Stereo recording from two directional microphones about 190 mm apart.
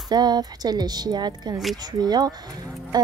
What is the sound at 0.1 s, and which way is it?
A woman's voice, 20° right (ahead or behind).